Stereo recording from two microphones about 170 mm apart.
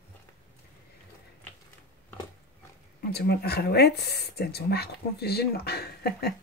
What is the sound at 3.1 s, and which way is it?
Speech, 75° left (ahead or behind).